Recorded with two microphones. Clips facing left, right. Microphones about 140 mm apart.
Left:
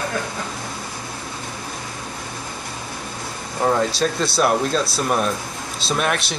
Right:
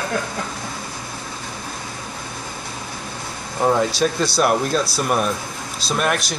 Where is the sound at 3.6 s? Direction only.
5° right (ahead or behind).